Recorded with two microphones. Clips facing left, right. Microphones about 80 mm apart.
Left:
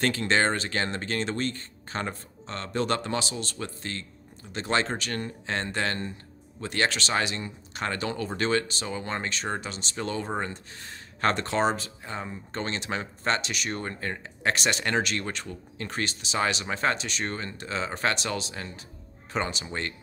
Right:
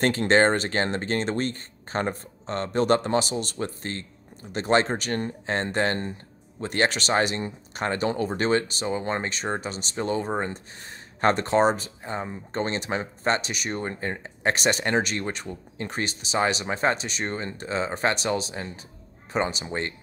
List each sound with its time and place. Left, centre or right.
0.0 s speech: right